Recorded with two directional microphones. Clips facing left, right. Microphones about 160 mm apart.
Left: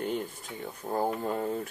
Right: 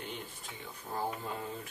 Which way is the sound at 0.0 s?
45° left (ahead or behind).